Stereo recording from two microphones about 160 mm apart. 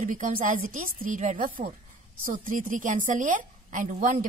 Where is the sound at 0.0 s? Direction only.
55° right (ahead or behind).